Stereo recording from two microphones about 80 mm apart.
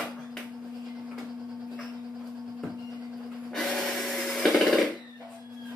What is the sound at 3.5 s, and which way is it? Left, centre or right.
Wood, centre.